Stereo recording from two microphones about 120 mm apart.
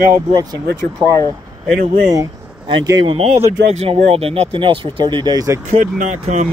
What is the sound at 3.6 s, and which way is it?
Speech, 70° right (ahead or behind).